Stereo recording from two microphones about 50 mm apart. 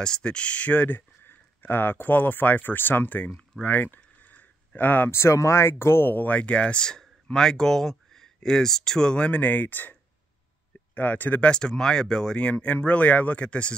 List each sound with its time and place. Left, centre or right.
0.0 s speech: centre; by 3.3 s left
3.3 s a sound: left
5.1 s speech: left
6.1 s speech: left
9.4 s speech: left
11.0 s speech: left
11.4 s speech: centre
12.4 s speech: left